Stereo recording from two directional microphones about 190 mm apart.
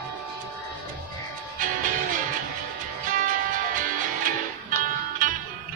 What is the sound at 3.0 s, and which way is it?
Music, 45° right (ahead or behind).